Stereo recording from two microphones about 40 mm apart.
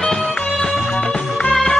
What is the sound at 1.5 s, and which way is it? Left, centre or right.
Music, centre.